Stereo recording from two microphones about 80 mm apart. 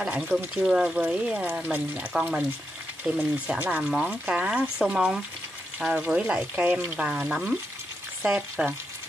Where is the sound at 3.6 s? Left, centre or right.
Right.